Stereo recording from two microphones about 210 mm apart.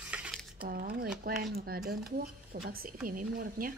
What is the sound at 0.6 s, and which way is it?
Speech, 45° right (ahead or behind).